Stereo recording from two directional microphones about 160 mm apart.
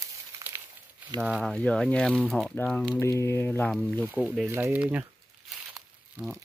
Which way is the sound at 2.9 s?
15° left (ahead or behind).